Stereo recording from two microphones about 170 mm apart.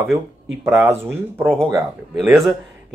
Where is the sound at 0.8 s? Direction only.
15° right (ahead or behind).